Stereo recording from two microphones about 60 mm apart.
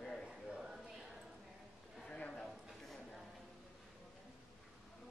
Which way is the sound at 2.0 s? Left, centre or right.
Centre.